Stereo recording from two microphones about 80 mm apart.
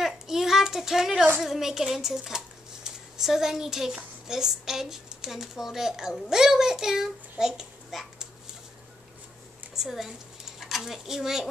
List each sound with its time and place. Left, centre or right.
0.0 s a sound: centre
1.4 s a child's voice: centre
9.8 s speech: centre